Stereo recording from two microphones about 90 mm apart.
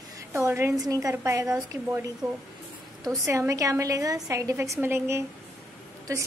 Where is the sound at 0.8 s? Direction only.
40° right (ahead or behind).